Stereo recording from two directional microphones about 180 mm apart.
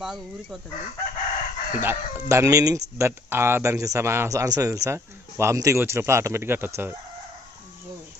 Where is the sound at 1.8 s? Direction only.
15° right (ahead or behind).